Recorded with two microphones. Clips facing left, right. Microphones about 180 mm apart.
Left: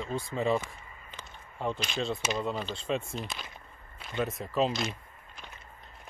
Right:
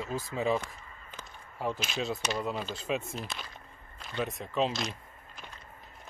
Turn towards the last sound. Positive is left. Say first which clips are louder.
# left 2 dB
turn(degrees=0)  # may be behind; listen again after turning